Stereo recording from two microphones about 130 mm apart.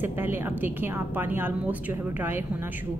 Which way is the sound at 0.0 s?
15° right (ahead or behind).